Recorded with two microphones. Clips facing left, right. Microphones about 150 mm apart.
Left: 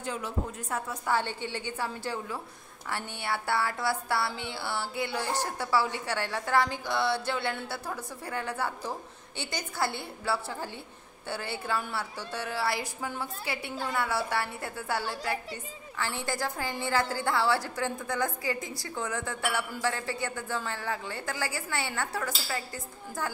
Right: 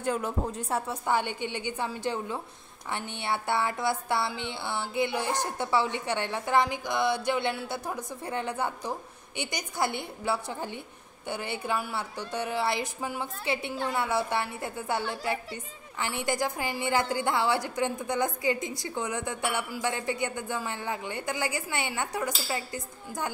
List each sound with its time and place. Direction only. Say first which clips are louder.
0.0 s speech: right 6 dB; 55° right (ahead or behind)
0.5 s speech: right 4 dB; 30° right (ahead or behind)
1.1 s a woman's voice: right 1 dB; 15° right (ahead or behind)